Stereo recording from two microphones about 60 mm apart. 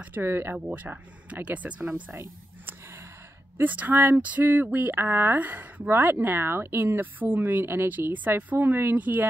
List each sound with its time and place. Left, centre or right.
0.2 s speech: right
0.7 s speech: right
3.5 s speech: right
8.1 s speech: right